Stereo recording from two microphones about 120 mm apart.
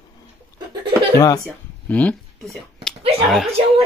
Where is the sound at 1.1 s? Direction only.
30° left (ahead or behind).